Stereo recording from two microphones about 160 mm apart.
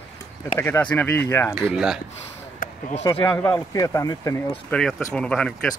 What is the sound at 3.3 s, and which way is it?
Speech, 10° left (ahead or behind).